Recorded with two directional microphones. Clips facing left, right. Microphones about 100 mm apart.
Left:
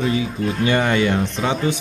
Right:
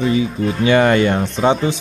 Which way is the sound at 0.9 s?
40° right (ahead or behind).